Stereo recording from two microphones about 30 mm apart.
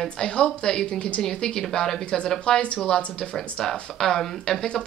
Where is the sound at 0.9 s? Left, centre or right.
Left.